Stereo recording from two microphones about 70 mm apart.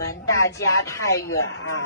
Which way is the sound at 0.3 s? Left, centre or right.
Left.